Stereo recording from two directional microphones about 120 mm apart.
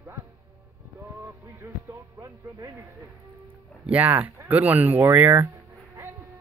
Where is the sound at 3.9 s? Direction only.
15° right (ahead or behind).